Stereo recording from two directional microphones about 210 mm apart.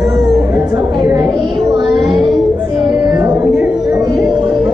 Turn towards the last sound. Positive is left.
turn(degrees=0)  # may be behind; listen again after turning